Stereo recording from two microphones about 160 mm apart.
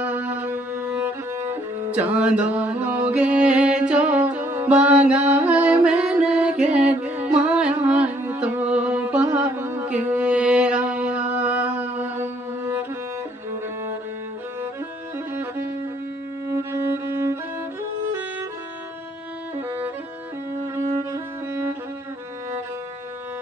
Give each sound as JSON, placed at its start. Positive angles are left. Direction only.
{"t": 0.0, "sound": "music", "side_deg": -10}
{"t": 2.0, "sound": "mantra", "side_deg": -10}
{"t": 16.4, "sound": "music", "side_deg": -15}
{"t": 20.7, "sound": "music", "side_deg": -20}